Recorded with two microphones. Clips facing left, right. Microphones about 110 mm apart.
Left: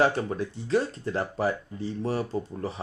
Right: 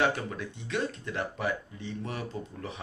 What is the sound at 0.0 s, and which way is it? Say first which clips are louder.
Speech: left 5 dB; 35° left (ahead or behind).